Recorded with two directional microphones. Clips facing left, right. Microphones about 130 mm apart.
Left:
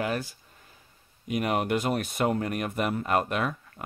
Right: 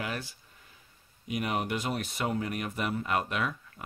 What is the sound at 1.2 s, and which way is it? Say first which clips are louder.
Speech: left 5 dB; 50° left (ahead or behind).